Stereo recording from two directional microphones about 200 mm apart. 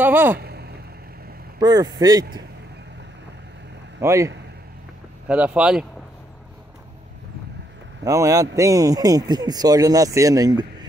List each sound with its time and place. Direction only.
0.0 s speech: 10° right (ahead or behind)
0.4 s a sound: 55° right (ahead or behind)
1.6 s speech: 20° right (ahead or behind)
4.0 s a man's voice: 15° right (ahead or behind)
5.3 s speech: 5° right (ahead or behind)
8.0 s a man's voice: 15° right (ahead or behind)